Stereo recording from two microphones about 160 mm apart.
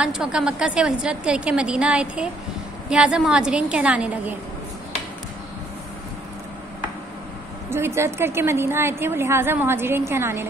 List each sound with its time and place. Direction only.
0.0 s a woman's voice: 5° right (ahead or behind)
7.7 s a woman's voice: 15° right (ahead or behind)